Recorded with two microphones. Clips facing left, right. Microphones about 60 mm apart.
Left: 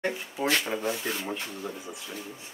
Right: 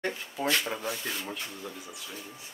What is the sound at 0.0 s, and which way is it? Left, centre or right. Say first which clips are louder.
Speech: left 2 dB; centre.